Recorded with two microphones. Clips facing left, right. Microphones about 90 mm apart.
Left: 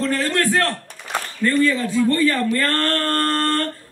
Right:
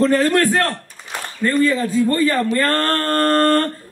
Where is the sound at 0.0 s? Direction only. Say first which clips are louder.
Right 6 dB; 25° right (ahead or behind).